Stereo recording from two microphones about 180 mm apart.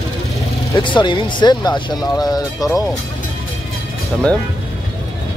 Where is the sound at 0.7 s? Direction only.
25° left (ahead or behind).